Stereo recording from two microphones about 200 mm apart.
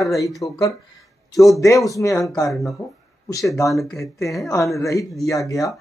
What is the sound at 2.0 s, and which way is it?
Speech, 15° left (ahead or behind).